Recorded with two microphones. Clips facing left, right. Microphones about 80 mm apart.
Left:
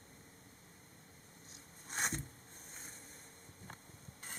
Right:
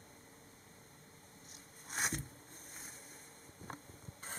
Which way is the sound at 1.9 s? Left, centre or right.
Centre.